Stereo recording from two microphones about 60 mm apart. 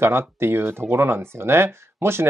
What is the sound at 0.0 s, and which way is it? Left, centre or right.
Speech, right.